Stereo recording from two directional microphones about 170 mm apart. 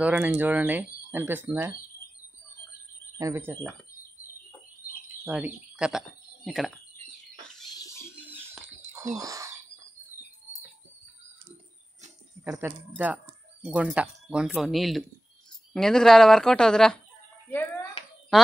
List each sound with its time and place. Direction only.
0.0 s speech: 10° right (ahead or behind)
3.2 s speech: 15° right (ahead or behind)
5.2 s speech: 5° right (ahead or behind)
7.5 s a sound: centre (ahead or behind)
8.2 s bird: 10° right (ahead or behind)
9.1 s speech: 20° right (ahead or behind)
12.5 s speech: 10° right (ahead or behind)
18.0 s a sound: 35° left (ahead or behind)